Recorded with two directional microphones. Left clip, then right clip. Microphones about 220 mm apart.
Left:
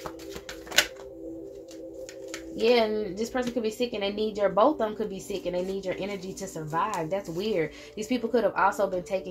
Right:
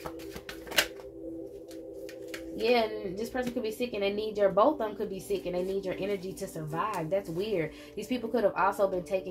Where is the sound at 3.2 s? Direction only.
35° left (ahead or behind).